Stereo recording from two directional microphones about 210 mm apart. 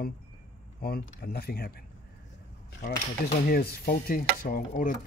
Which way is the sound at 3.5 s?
45° left (ahead or behind).